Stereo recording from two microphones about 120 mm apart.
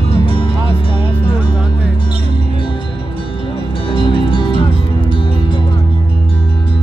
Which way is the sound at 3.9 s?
45° left (ahead or behind).